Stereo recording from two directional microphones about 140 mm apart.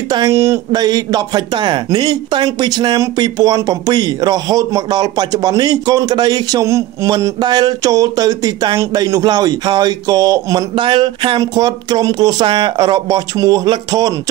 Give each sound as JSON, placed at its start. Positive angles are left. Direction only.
{"t": 0.1, "sound": "speech", "side_deg": -25}